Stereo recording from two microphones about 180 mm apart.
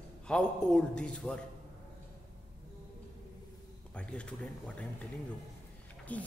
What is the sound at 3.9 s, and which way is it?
Speech, 5° left (ahead or behind).